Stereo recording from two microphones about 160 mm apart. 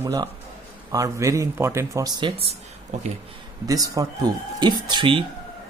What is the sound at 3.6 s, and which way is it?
Speech, 20° right (ahead or behind).